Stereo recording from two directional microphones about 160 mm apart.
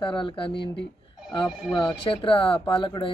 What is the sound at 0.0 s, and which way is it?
Speech, 30° left (ahead or behind).